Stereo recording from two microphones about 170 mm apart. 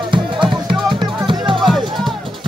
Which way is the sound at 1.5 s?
Centre (ahead or behind).